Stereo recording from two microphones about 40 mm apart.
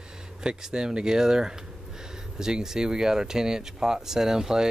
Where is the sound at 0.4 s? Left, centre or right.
Centre.